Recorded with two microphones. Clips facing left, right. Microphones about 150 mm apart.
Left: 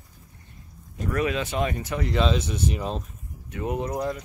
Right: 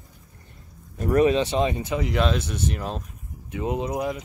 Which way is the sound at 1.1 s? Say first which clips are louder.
Right 7 dB; 30° right (ahead or behind).